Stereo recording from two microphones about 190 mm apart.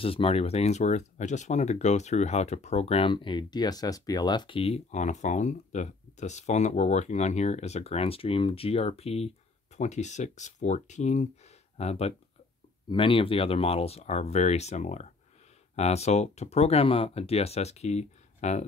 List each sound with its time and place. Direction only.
0.0 s speech: 30° left (ahead or behind)